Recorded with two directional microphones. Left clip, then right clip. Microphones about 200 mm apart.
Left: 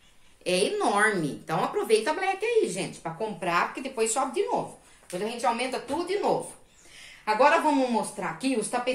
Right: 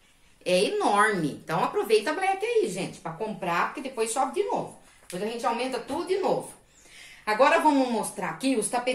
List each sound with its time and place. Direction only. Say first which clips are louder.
0.4 s a woman's voice: right 2 dB; centre (ahead or behind)
5.4 s speech: left 1 dB; 25° left (ahead or behind)
7.2 s speech: right 1 dB; 5° right (ahead or behind)